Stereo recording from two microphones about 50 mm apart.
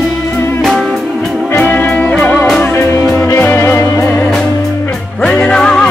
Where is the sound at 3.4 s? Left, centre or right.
Left.